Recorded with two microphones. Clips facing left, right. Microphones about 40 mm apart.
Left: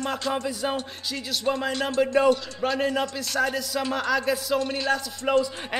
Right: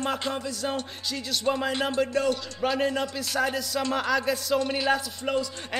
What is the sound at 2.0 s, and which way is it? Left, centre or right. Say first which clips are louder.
Speech: left 8 dB; centre.